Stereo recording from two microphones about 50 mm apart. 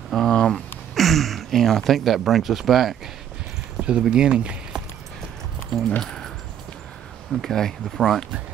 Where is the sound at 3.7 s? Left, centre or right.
Right.